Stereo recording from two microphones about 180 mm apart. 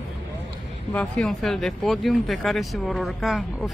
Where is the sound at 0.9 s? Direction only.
5° left (ahead or behind).